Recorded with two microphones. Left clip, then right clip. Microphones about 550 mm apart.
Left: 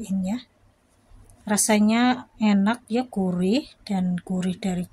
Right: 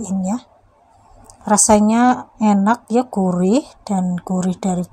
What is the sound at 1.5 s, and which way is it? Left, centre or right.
Speech, left.